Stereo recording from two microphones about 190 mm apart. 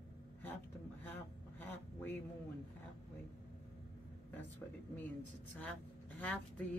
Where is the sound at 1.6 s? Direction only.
10° left (ahead or behind).